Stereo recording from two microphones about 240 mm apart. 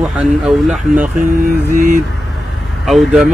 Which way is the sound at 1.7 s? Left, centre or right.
Right.